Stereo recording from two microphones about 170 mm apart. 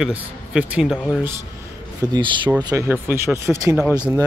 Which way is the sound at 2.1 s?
25° right (ahead or behind).